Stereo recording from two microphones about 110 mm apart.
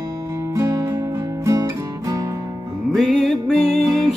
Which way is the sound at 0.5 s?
30° right (ahead or behind).